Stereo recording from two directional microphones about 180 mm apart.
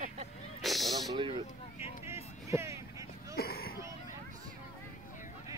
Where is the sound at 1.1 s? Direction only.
25° right (ahead or behind).